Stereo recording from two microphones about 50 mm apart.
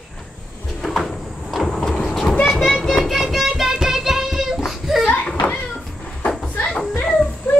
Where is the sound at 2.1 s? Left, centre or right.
Centre.